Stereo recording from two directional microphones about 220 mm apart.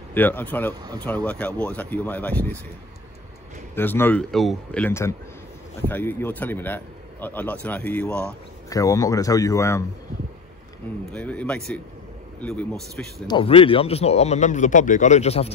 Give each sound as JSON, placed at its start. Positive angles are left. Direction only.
{"t": 0.1, "sound": "a man's voice", "side_deg": 10}
{"t": 3.7, "sound": "a man's voice", "side_deg": 10}
{"t": 11.1, "sound": "speech", "side_deg": 5}
{"t": 13.3, "sound": "a man's voice", "side_deg": 25}